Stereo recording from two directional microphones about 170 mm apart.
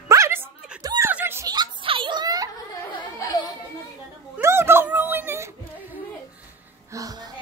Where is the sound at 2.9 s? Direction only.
25° left (ahead or behind).